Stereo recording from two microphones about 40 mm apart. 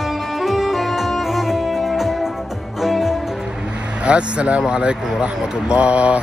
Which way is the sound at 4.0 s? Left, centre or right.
Right.